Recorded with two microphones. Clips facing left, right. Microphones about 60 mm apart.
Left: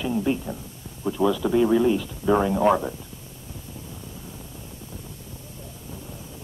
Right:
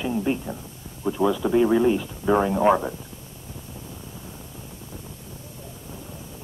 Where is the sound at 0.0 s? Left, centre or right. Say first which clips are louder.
Even; centre.